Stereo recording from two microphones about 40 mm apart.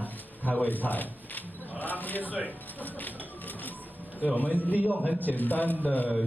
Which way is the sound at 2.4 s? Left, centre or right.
Left.